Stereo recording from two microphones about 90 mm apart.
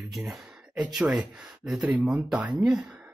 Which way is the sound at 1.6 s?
10° right (ahead or behind).